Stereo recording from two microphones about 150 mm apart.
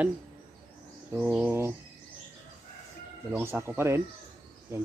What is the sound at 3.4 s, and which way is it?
Speech, 15° right (ahead or behind).